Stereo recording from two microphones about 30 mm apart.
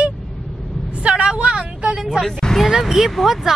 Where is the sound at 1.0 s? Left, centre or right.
Right.